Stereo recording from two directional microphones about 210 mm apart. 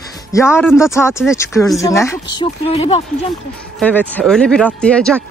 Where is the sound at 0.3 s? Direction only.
15° left (ahead or behind).